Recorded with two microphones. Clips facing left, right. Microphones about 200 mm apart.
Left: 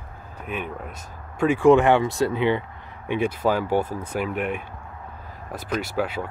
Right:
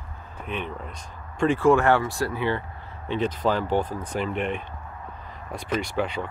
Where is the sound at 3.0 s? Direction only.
10° left (ahead or behind).